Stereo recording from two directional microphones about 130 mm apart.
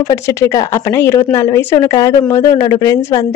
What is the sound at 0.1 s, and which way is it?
A woman's voice, 20° left (ahead or behind).